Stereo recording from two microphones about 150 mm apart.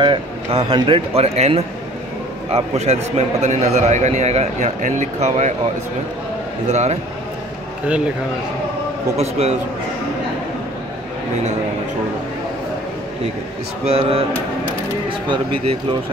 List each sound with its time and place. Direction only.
0.0 s a man's voice: 35° right (ahead or behind); by 5.5 s 55° right (ahead or behind)
6.7 s a man's voice: 50° right (ahead or behind)
9.1 s a man's voice: 45° right (ahead or behind)
13.8 s a man's voice: 40° right (ahead or behind)